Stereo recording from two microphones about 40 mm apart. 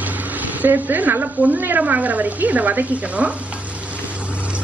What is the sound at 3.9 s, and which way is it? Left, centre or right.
Boat, right.